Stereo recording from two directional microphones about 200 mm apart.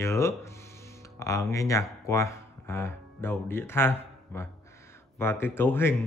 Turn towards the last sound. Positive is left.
turn(degrees=10)  # may be behind; listen again after turning